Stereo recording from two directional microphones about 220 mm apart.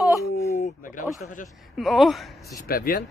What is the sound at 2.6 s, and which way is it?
Speech, 40° left (ahead or behind).